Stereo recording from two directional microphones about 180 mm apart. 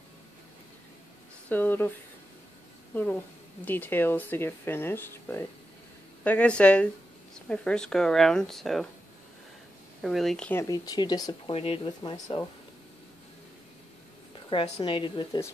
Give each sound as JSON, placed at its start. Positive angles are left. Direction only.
{"t": 1.5, "sound": "a woman's voice", "side_deg": 10}
{"t": 10.0, "sound": "speech", "side_deg": 0}
{"t": 10.6, "sound": "speech", "side_deg": 20}
{"t": 14.5, "sound": "speech", "side_deg": 30}